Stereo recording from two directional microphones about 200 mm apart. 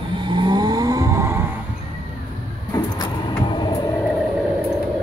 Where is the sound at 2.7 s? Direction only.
20° left (ahead or behind).